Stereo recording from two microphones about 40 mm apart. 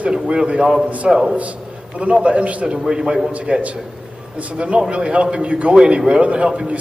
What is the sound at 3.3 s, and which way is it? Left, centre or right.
Speech, right.